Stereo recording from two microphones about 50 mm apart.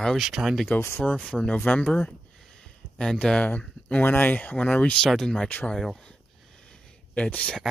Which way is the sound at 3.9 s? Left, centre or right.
Left.